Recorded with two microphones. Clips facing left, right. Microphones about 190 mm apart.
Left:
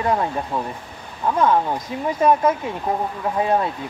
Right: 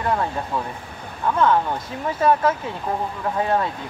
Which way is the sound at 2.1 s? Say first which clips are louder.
Left 2 dB; 15° left (ahead or behind).